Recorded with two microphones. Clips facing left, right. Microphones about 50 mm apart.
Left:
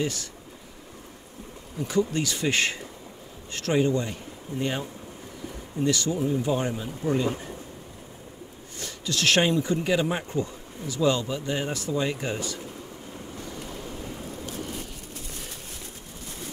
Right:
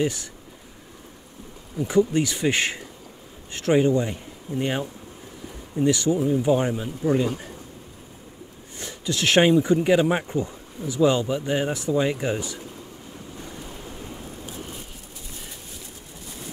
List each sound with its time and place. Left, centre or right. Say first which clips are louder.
0.0 s speech: right 4 dB; centre
1.8 s speech: right 5 dB; right
5.9 s speech: right 4 dB; centre
8.7 s speech: right 2 dB; centre
13.4 s waves: even; centre
13.7 s thunder: left 1 dB; right